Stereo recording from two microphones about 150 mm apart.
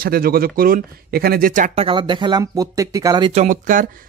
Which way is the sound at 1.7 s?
35° right (ahead or behind).